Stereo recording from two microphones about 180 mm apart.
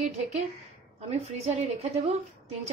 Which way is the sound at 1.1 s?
35° right (ahead or behind).